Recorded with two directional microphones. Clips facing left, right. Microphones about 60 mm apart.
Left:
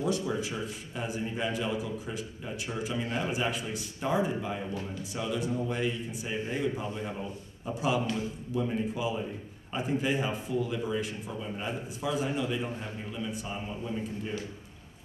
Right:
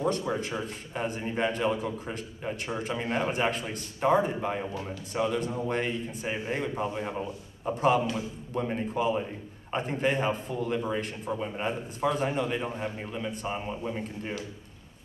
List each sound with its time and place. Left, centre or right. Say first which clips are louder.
0.0 s speech: right 2 dB; right
6.8 s a man's voice: right 4 dB; right
9.8 s a man's voice: right 2 dB; right